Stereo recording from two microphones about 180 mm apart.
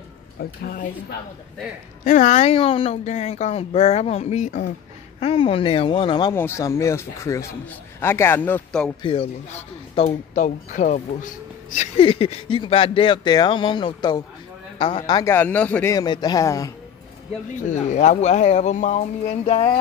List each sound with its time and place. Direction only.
0.4 s speech: 50° left (ahead or behind)
2.0 s a woman's voice: 45° left (ahead or behind)
5.2 s speech: 30° left (ahead or behind)
6.3 s speech: 15° left (ahead or behind)
9.0 s a woman's voice: 30° left (ahead or behind)
10.0 s speech: 45° left (ahead or behind); by 15.3 s 25° left (ahead or behind)
15.3 s speech: 10° left (ahead or behind)
15.9 s speech: 20° left (ahead or behind)
17.9 s a woman's voice: 40° left (ahead or behind)